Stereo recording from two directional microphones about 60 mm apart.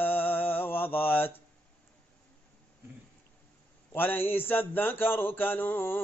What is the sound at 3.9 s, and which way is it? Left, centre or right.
Speech, left.